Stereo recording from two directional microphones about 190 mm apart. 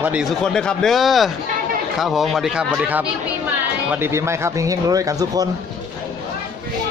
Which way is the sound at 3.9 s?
15° right (ahead or behind).